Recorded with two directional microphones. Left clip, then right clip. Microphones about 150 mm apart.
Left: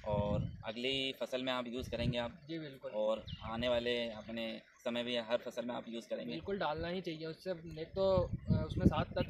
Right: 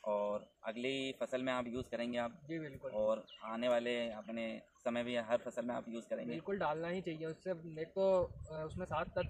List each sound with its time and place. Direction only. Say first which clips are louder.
0.1 s speech: even; 15° left (ahead or behind)
2.5 s speech: even; 10° right (ahead or behind)
3.0 s speech: even; 10° left (ahead or behind)
6.4 s speech: even; 10° right (ahead or behind)